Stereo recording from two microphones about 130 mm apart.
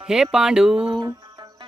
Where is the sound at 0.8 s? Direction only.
35° right (ahead or behind).